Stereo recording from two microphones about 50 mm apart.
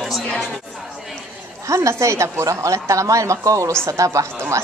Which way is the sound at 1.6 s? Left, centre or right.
Right.